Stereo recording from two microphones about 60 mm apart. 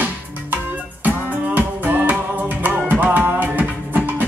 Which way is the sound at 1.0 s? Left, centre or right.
Right.